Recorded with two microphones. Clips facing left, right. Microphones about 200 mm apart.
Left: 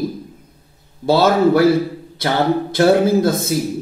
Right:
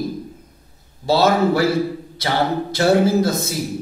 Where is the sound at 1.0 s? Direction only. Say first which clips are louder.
Left 3 dB; 50° left (ahead or behind).